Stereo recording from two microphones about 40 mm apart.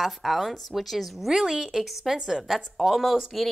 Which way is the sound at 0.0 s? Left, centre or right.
Centre.